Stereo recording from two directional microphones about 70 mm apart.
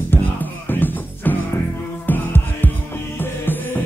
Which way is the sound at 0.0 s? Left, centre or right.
Left.